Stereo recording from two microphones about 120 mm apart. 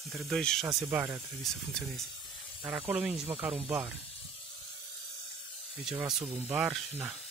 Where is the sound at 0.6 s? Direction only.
20° right (ahead or behind).